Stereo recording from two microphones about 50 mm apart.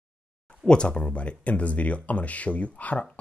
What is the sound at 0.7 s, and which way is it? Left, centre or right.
Speech, centre.